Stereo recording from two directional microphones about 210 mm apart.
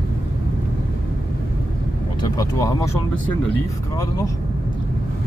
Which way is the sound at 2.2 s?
15° left (ahead or behind).